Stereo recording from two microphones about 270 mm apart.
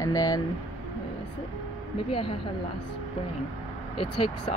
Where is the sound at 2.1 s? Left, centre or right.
Centre.